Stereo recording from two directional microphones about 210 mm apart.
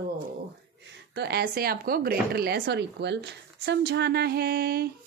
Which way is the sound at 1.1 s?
50° right (ahead or behind).